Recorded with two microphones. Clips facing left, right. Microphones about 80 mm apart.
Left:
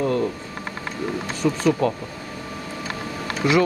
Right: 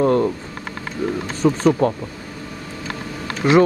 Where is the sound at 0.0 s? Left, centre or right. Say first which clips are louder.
Right 5 dB; right.